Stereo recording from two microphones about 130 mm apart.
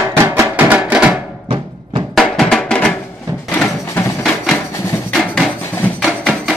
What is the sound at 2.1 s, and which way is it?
Music, centre (ahead or behind).